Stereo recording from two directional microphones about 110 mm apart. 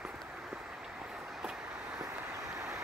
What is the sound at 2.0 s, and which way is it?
Vehicle, 30° right (ahead or behind).